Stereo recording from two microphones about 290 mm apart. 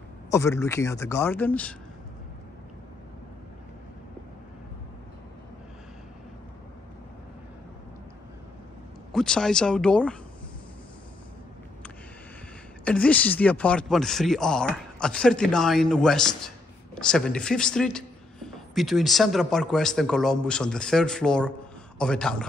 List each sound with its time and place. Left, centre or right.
0.3 s speech: centre
9.1 s speech: centre
12.8 s speech: centre